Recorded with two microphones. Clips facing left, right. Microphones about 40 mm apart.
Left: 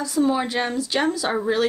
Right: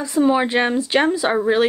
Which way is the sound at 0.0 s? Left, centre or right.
Right.